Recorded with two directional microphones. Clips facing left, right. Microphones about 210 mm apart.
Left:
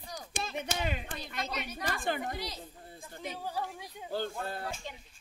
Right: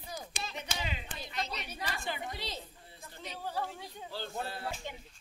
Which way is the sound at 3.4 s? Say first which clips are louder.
Right 3 dB; 10° left (ahead or behind).